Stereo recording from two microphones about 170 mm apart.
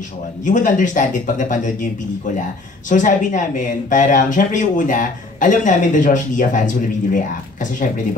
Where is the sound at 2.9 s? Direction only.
50° left (ahead or behind).